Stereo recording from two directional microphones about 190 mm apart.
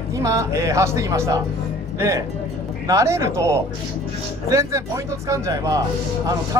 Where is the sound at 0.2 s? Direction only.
15° right (ahead or behind).